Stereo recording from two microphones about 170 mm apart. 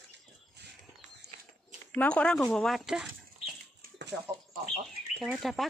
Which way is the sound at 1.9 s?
5° left (ahead or behind).